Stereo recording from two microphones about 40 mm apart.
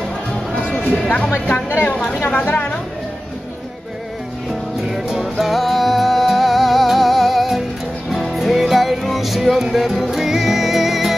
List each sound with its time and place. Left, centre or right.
0.6 s music: left
1.7 s a woman's voice: left
2.1 s speech: left
4.5 s music: centre